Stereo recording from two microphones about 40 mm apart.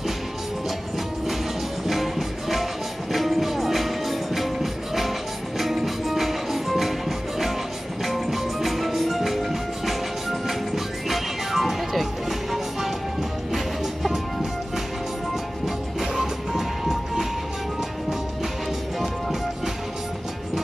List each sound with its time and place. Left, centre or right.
1.9 s music: centre
15.6 s music: centre